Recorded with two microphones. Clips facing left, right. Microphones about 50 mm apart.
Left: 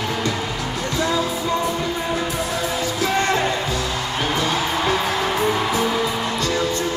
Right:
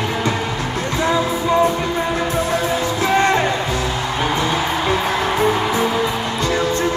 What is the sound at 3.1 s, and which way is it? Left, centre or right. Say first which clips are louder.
Music: right 5 dB; right.